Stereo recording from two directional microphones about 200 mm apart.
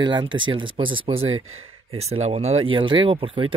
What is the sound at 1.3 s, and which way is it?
Speech, 90° right.